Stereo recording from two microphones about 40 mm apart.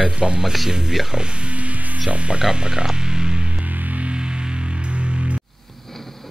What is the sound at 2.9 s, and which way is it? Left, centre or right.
Music, right.